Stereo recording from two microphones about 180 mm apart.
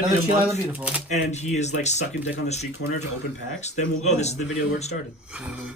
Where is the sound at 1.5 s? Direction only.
40° left (ahead or behind).